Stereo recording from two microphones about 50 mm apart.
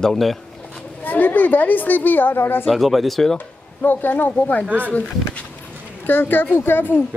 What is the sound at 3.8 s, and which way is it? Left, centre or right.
Speech, left.